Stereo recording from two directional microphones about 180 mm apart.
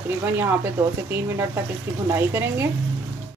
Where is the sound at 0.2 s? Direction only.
15° right (ahead or behind).